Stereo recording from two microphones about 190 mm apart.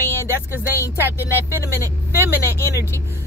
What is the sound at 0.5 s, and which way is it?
Speech, 10° right (ahead or behind).